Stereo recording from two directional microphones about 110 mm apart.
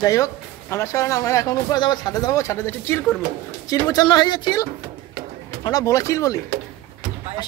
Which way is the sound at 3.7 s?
35° left (ahead or behind).